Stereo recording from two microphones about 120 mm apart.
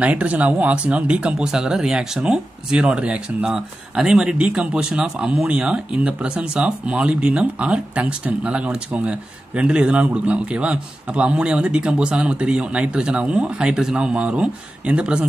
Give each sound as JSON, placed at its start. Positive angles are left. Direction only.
{"t": 0.0, "sound": "speech", "side_deg": -10}